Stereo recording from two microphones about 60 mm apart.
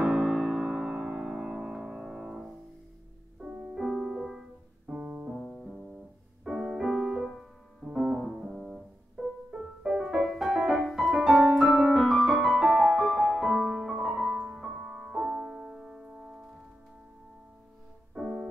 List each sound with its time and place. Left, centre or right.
0.0 s music: centre
3.3 s music: right
3.7 s music: centre
4.8 s music: centre
5.3 s music: centre
11.7 s piano: centre
12.4 s music: centre
13.5 s music: centre
18.1 s music: centre